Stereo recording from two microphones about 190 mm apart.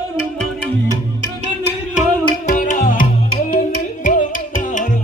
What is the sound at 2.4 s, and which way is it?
Music, 45° left (ahead or behind).